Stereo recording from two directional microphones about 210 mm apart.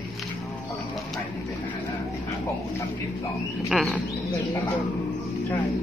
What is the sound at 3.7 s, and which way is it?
Speech, 5° right (ahead or behind).